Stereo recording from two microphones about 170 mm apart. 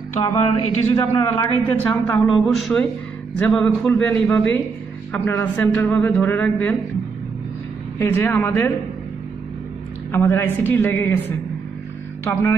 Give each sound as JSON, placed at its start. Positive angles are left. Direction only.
{"t": 0.2, "sound": "a man's voice", "side_deg": 25}
{"t": 2.3, "sound": "a man's voice", "side_deg": 0}
{"t": 8.0, "sound": "speech", "side_deg": 15}
{"t": 10.1, "sound": "speech", "side_deg": 10}